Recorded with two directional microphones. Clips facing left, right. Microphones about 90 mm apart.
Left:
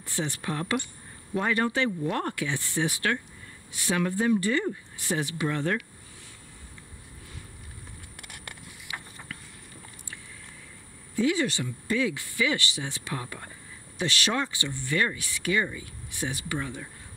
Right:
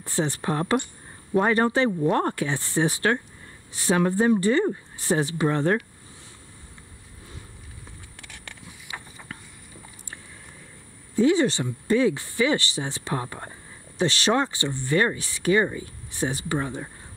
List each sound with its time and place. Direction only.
0.0 s speech: 35° right (ahead or behind)
8.9 s a sound: 30° right (ahead or behind)
11.1 s speech: 30° right (ahead or behind)